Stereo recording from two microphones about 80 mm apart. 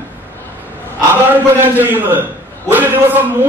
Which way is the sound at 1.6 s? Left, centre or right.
Right.